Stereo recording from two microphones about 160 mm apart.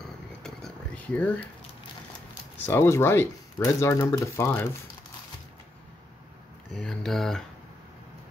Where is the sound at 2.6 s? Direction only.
15° left (ahead or behind).